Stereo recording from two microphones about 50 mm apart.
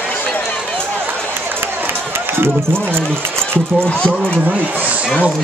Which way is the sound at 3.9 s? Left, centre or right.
Left.